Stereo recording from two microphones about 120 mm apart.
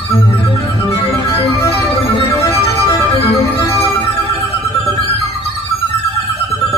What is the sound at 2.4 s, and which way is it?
Music, 25° left (ahead or behind).